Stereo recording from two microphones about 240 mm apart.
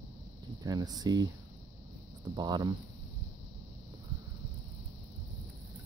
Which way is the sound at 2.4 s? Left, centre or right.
Centre.